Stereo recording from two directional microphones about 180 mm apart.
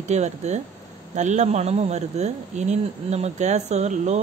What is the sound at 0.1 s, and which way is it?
Speech, 40° right (ahead or behind).